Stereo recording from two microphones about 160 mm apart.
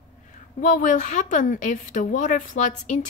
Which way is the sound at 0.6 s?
55° left (ahead or behind).